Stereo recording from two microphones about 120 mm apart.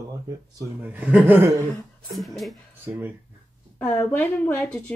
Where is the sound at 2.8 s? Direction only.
15° right (ahead or behind).